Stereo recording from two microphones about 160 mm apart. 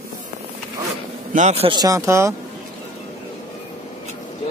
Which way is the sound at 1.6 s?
25° right (ahead or behind).